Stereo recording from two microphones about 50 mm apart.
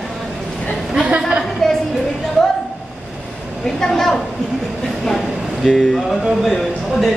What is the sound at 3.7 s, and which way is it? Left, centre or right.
Speech, centre.